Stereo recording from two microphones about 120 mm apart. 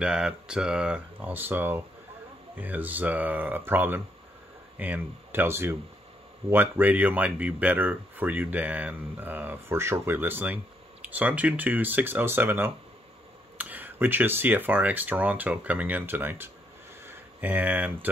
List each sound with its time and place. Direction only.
0.0 s speech: 5° right (ahead or behind)